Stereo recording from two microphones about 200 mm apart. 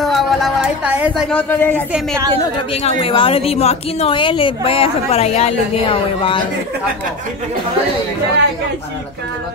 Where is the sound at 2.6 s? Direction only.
30° left (ahead or behind).